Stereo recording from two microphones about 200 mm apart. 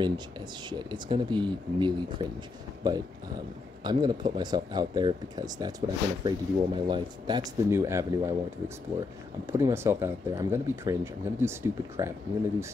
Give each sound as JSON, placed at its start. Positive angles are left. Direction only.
{"t": 0.7, "sound": "speech", "side_deg": -20}